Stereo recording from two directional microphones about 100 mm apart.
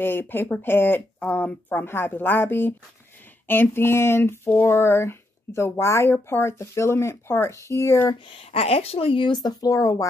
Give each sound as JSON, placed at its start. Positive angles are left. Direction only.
{"t": 0.0, "sound": "speech", "side_deg": 20}
{"t": 8.3, "sound": "speech", "side_deg": 75}